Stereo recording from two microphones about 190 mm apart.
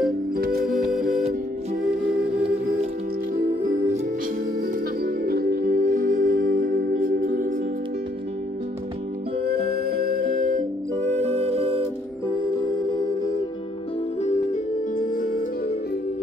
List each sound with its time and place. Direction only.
0.4 s music: 55° right (ahead or behind)
0.7 s music: centre (ahead or behind)
3.6 s music: 45° right (ahead or behind)
5.0 s music: 55° right (ahead or behind)
9.4 s music: 55° right (ahead or behind); by 11.8 s 30° right (ahead or behind)
14.2 s music: 45° left (ahead or behind)